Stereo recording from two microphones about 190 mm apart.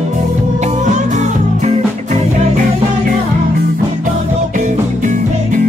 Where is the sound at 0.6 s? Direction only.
40° right (ahead or behind).